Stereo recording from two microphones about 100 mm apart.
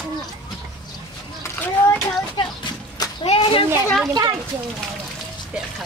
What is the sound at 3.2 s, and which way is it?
Speech, 65° left (ahead or behind).